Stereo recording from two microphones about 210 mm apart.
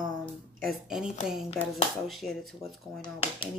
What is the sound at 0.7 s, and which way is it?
A woman's voice, centre (ahead or behind).